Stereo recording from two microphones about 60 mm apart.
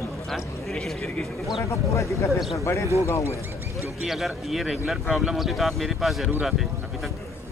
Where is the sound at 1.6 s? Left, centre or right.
Left.